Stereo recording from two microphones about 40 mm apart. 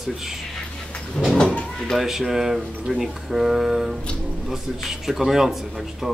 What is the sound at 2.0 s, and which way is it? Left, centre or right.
Speech, centre.